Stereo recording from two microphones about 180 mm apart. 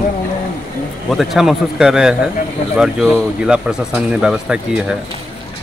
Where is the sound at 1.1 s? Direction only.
Centre (ahead or behind).